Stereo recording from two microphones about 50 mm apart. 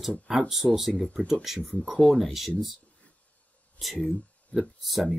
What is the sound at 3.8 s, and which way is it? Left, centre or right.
Speech, centre.